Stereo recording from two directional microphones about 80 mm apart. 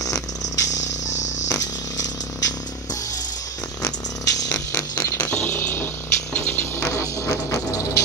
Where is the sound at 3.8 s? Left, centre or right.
Left.